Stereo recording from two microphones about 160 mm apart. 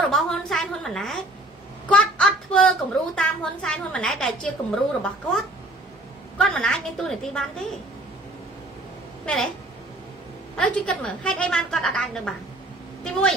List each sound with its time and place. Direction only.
0.0 s a sound: centre (ahead or behind)
1.9 s child singing: 5° left (ahead or behind)
3.2 s a woman's voice: 5° left (ahead or behind)
9.2 s speech: 5° left (ahead or behind)
10.5 s a woman's voice: 5° left (ahead or behind)